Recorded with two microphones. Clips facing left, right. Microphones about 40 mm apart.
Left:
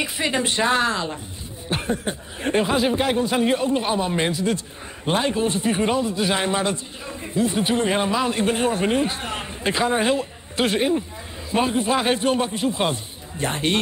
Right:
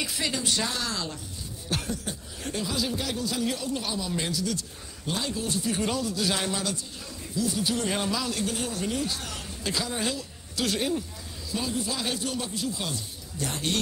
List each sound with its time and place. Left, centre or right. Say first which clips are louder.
0.0 s speech: left 7 dB; left